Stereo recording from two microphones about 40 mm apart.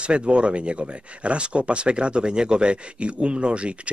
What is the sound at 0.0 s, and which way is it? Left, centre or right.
A man's voice, right.